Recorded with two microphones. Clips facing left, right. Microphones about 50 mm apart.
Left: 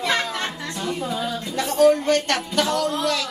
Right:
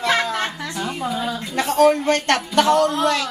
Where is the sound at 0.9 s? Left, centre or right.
Right.